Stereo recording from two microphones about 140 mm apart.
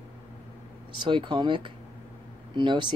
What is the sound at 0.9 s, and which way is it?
Speech, 35° right (ahead or behind).